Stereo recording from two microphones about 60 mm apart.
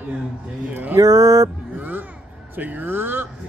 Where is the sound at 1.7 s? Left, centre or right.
Right.